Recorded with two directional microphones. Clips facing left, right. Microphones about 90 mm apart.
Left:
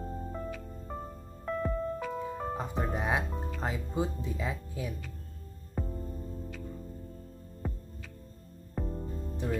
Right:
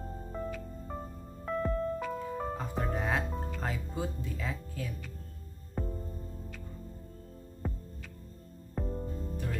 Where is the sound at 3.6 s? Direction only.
20° left (ahead or behind).